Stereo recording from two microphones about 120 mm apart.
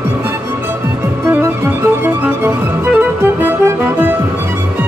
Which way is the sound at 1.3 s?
20° right (ahead or behind).